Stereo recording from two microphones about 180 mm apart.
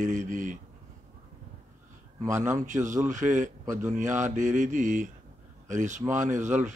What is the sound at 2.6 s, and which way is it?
A man's voice, 45° right (ahead or behind).